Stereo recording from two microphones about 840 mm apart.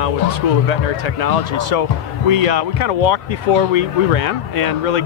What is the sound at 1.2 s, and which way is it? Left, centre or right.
Speech, left.